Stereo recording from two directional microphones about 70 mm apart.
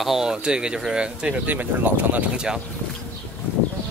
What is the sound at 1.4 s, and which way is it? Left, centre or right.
Speech, right.